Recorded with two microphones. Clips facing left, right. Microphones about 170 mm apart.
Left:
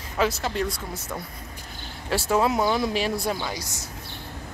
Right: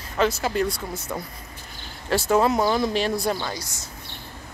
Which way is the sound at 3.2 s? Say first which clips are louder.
Right 2 dB; 10° left (ahead or behind).